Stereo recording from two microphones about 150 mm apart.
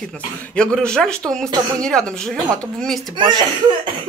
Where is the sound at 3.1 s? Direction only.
30° right (ahead or behind).